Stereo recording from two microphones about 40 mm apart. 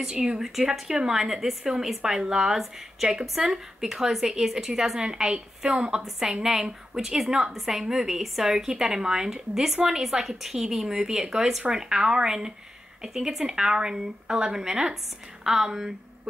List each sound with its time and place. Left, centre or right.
0.0 s a woman's voice: right
0.4 s a woman's voice: centre
2.5 s a woman's voice: centre